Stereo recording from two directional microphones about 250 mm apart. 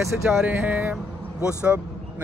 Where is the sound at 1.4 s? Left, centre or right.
Centre.